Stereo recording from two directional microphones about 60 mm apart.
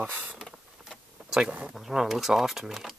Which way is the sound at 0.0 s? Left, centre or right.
Right.